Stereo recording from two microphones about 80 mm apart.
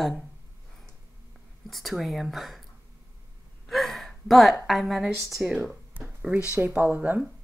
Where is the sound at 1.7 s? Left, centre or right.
Centre.